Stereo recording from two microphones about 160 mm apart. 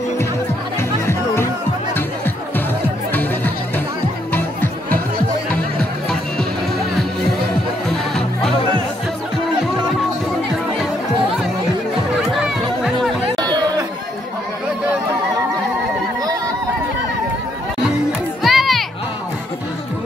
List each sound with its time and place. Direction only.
1.0 s music: 15° left (ahead or behind)
3.1 s music: 10° left (ahead or behind)
13.4 s chatter: 25° right (ahead or behind)
18.4 s a sound: centre (ahead or behind)